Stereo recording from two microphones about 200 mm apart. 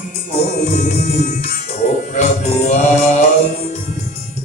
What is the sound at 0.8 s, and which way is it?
Music, 35° left (ahead or behind).